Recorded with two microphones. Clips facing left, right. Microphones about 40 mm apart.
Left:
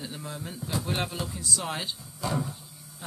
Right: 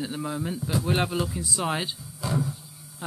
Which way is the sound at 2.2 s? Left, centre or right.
Centre.